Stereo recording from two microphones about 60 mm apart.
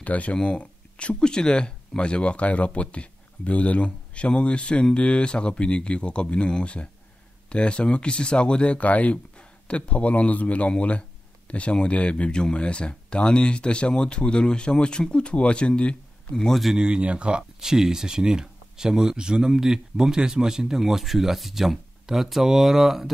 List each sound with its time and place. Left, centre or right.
0.0 s speech: left
16.3 s a man's voice: centre
16.7 s speech: centre